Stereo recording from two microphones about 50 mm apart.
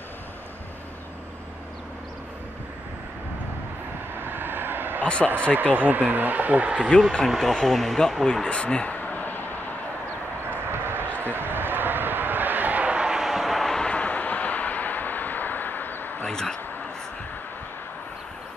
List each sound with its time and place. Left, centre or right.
4.2 s vehicle: right
5.0 s speech: left
5.5 s speech: right
6.9 s speech: left
7.2 s speech: centre
8.5 s speech: centre
8.9 s a sound: left
10.7 s a sound: right
12.9 s vehicle: centre
13.8 s vehicle: left
16.3 s a sound: centre